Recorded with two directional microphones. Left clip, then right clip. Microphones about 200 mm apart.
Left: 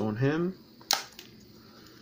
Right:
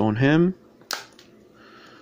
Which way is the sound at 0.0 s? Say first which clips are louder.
Right 9 dB; 55° right (ahead or behind).